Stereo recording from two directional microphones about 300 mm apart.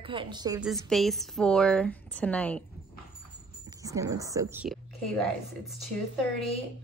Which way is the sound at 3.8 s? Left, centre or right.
Centre.